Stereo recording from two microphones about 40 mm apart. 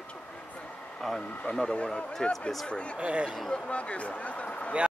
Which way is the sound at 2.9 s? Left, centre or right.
Right.